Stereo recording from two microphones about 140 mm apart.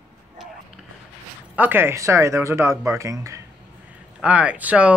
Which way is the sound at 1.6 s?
15° right (ahead or behind).